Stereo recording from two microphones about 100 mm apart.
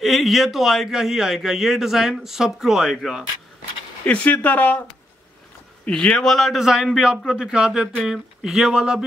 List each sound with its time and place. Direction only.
0.0 s a man's voice: centre (ahead or behind)
4.0 s speech: 15° left (ahead or behind)
5.9 s a man's voice: 10° left (ahead or behind)